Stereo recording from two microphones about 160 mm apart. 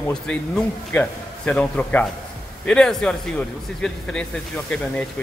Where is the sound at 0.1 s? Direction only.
5° left (ahead or behind).